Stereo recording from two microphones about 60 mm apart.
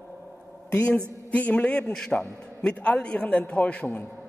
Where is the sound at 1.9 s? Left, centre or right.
Centre.